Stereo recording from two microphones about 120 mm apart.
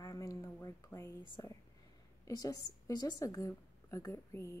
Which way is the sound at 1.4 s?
30° left (ahead or behind).